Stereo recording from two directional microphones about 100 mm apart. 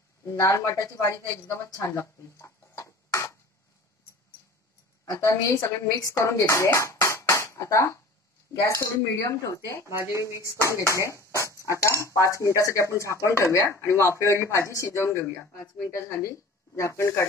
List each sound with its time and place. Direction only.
0.2 s speech: 35° left (ahead or behind)
5.1 s speech: 35° left (ahead or behind)
9.8 s speech: 30° right (ahead or behind)
10.9 s speech: 30° left (ahead or behind)
11.4 s dog: 30° right (ahead or behind)
11.7 s speech: 30° left (ahead or behind)